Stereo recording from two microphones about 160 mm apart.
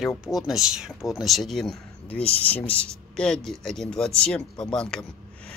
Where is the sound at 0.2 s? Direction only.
Centre (ahead or behind).